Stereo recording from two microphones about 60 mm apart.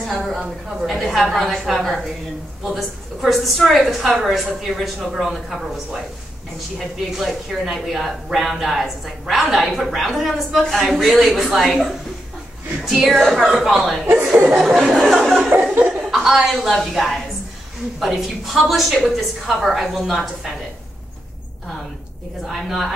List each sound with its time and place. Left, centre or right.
0.0 s a sound: centre
0.8 s a woman's voice: centre
7.1 s a woman's voice: centre
12.8 s a woman's voice: centre
14.1 s chuckle: centre
14.5 s a woman's voice: centre
15.0 s a sound: centre
16.0 s a woman's voice: centre
22.5 s a woman's voice: centre